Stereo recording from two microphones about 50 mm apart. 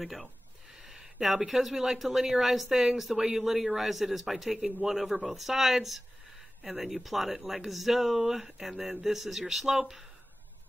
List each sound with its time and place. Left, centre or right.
0.0 s a woman's voice: centre